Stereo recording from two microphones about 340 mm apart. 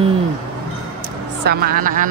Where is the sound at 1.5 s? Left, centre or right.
Right.